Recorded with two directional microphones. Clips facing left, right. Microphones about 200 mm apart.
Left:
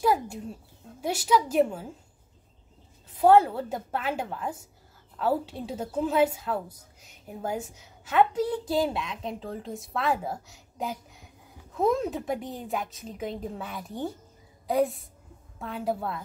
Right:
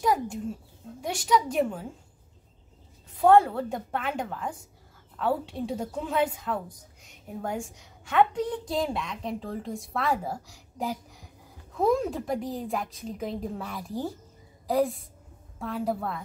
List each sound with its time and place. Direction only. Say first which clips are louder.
0.0 s a sound: left 1 dB; 5° left (ahead or behind)
1.0 s a woman's voice: left 1 dB; 5° left (ahead or behind)
3.2 s a woman's voice: even; 5° left (ahead or behind)